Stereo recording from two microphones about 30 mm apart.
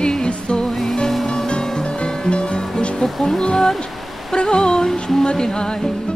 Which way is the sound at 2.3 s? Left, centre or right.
Left.